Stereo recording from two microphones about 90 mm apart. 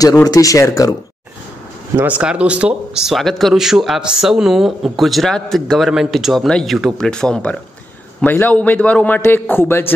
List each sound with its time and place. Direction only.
0.3 s speech: 40° left (ahead or behind)
2.0 s a man's voice: 15° right (ahead or behind); by 9.9 s 25° left (ahead or behind)